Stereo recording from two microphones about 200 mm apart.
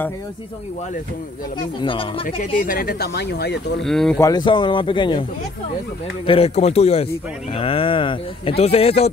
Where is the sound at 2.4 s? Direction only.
40° left (ahead or behind); by 3.9 s 55° left (ahead or behind).